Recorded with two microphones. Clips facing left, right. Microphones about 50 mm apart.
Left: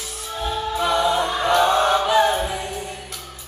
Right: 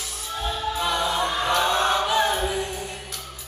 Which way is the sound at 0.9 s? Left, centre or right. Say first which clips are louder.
Left 6 dB; centre.